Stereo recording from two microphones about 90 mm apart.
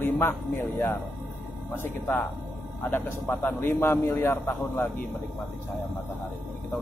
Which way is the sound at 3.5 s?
25° left (ahead or behind).